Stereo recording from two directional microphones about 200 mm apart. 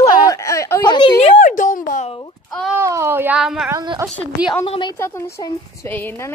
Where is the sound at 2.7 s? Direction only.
15° right (ahead or behind).